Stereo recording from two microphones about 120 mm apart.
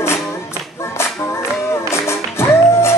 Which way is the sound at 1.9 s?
20° left (ahead or behind).